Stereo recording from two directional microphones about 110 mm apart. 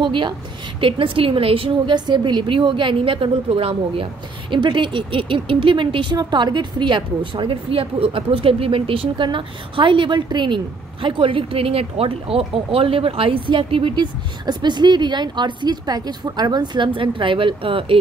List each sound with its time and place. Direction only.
0.0 s a woman's voice: 45° right (ahead or behind)